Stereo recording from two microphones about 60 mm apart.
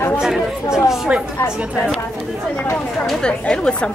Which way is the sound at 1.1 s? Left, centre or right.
Right.